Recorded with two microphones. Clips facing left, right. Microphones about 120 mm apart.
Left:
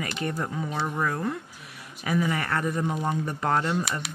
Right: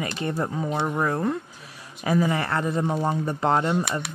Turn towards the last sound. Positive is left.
turn(degrees=-25)  # may be behind; listen again after turning